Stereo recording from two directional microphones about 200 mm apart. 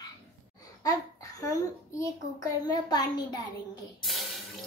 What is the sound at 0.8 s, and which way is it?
A child's voice, 15° left (ahead or behind).